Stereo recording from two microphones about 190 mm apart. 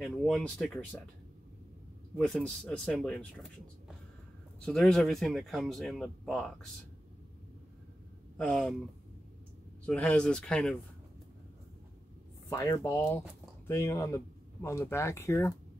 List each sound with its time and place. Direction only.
0.0 s speech: centre (ahead or behind)
2.1 s speech: 5° left (ahead or behind)
4.6 s speech: 5° left (ahead or behind)
8.4 s speech: 5° left (ahead or behind)
9.8 s speech: 5° left (ahead or behind)
12.4 s speech: 20° left (ahead or behind)